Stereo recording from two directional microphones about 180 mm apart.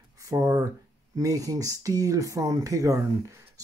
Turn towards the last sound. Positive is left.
turn(degrees=-15)  # may be behind; listen again after turning